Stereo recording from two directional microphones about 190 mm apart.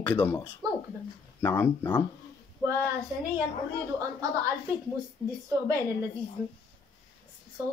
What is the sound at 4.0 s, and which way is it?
Speech, 15° right (ahead or behind).